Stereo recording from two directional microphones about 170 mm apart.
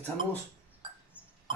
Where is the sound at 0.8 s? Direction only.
30° right (ahead or behind).